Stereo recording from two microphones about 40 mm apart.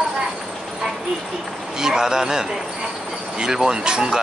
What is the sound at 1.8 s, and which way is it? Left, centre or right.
Speech, centre.